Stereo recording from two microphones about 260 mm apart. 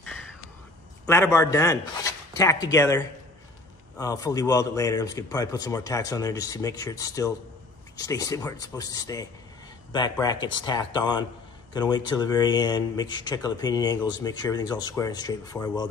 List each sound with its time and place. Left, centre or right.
1.0 s speech: centre